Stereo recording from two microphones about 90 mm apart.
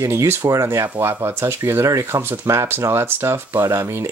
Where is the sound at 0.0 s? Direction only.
30° right (ahead or behind).